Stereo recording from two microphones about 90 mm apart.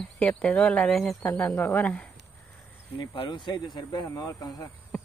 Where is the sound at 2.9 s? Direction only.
65° left (ahead or behind).